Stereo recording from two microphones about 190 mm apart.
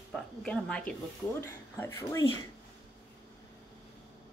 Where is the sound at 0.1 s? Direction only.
5° left (ahead or behind).